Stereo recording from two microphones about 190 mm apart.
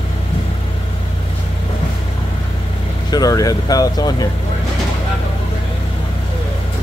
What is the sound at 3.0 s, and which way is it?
Vehicle, 20° left (ahead or behind).